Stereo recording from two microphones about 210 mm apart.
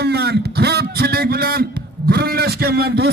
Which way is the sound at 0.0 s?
50° right (ahead or behind).